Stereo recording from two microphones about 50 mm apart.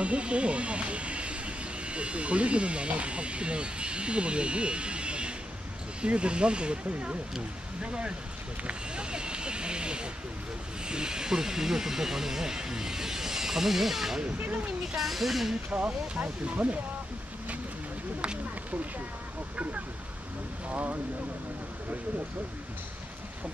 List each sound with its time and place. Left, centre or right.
0.0 s speech: right; by 14.2 s centre
14.5 s speech: right
15.0 s speech: centre
15.7 s speech: right
19.5 s speech: right